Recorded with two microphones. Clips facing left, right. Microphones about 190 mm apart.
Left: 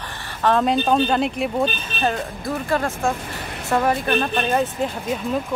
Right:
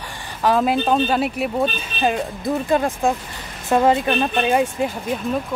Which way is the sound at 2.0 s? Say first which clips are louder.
Right 3 dB; 15° right (ahead or behind).